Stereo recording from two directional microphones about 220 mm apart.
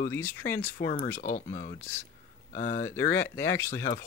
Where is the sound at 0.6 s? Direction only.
40° left (ahead or behind).